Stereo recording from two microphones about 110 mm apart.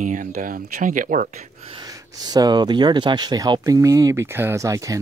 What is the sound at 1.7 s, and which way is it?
Speech, 40° right (ahead or behind).